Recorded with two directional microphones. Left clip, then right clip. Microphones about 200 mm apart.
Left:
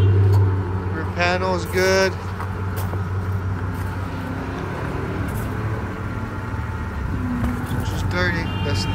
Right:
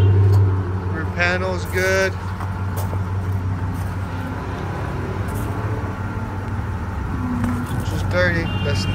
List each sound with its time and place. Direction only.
1.1 s speech: 15° left (ahead or behind)
8.1 s vehicle: 10° left (ahead or behind)